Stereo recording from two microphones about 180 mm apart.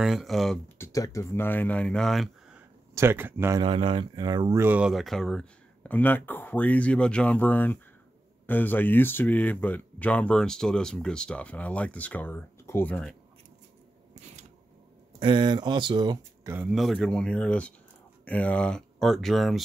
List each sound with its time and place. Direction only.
0.0 s speech: centre (ahead or behind)
0.7 s speech: 20° left (ahead or behind); by 2.6 s centre (ahead or behind)
2.9 s speech: 15° right (ahead or behind)
3.6 s speech: 30° right (ahead or behind); by 13.1 s 5° left (ahead or behind)
15.1 s speech: 25° right (ahead or behind)
16.5 s speech: centre (ahead or behind)